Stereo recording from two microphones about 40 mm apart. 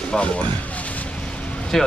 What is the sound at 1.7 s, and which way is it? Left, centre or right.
Speech, centre.